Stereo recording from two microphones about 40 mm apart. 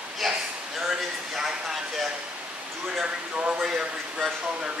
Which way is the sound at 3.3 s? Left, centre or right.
Right.